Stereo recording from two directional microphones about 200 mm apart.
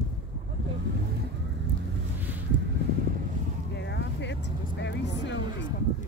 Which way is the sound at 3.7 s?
60° left (ahead or behind).